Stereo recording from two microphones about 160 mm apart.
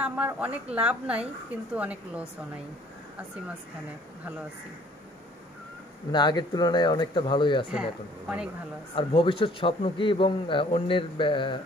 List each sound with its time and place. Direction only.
0.0 s a woman's voice: 10° right (ahead or behind)
6.1 s speech: 25° left (ahead or behind)
7.7 s speech: 5° right (ahead or behind)
8.9 s a man's voice: 35° left (ahead or behind)